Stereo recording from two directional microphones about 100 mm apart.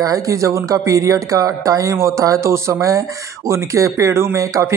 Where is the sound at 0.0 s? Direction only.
35° right (ahead or behind).